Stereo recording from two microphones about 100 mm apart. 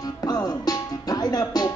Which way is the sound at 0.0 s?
40° left (ahead or behind).